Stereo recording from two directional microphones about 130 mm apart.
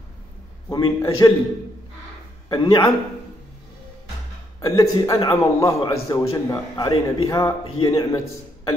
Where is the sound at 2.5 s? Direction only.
25° left (ahead or behind).